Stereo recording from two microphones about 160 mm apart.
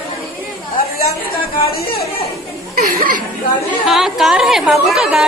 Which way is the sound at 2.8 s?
70° right (ahead or behind).